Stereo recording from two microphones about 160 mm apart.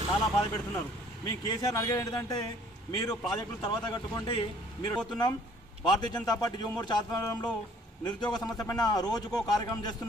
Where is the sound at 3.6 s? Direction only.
25° left (ahead or behind).